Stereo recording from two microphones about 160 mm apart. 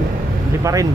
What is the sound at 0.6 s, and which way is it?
Speech, 20° right (ahead or behind).